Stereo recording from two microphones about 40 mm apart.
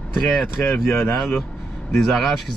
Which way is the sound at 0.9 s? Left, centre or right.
Left.